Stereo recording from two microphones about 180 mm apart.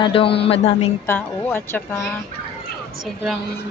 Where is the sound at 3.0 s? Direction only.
Centre (ahead or behind).